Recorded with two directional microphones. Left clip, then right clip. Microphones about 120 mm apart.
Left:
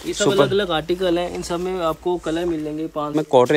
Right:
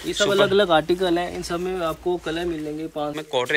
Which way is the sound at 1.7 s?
40° left (ahead or behind).